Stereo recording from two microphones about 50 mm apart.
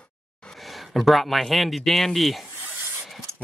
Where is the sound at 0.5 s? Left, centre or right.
Centre.